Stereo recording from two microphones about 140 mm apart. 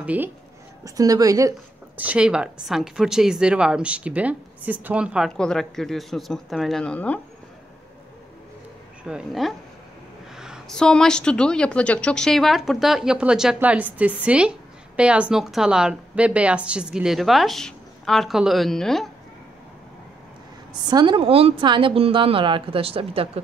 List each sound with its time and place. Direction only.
0.0 s a woman's voice: 10° right (ahead or behind)
0.8 s a woman's voice: 25° right (ahead or behind)
2.0 s a woman's voice: 10° right (ahead or behind)
5.3 s a woman's voice: 5° left (ahead or behind)
9.0 s a woman's voice: centre (ahead or behind)
20.9 s a woman's voice: 35° right (ahead or behind)